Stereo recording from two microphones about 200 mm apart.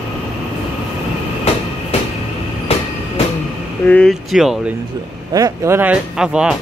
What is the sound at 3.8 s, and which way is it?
Speech, 5° left (ahead or behind).